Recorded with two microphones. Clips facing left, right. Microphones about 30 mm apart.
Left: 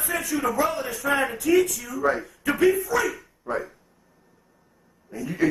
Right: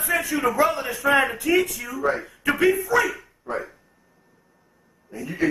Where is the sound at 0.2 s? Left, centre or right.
Right.